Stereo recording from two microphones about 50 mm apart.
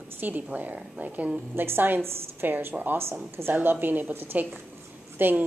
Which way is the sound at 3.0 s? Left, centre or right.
Right.